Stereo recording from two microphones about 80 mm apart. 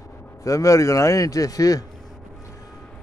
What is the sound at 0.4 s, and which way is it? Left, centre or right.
A man's voice, left.